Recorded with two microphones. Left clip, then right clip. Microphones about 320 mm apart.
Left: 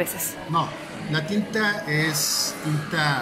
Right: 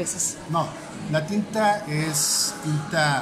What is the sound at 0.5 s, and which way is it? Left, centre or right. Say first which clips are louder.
Speech: left 2 dB; centre.